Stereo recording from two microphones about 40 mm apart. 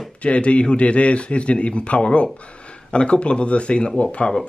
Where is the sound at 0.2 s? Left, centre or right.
Left.